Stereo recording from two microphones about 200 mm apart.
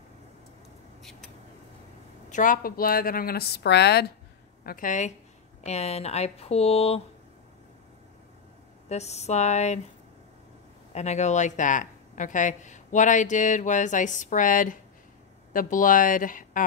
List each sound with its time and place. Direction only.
2.2 s a woman's voice: 40° left (ahead or behind)
4.6 s speech: 40° left (ahead or behind)
8.8 s speech: 35° left (ahead or behind)
10.9 s speech: 35° left (ahead or behind)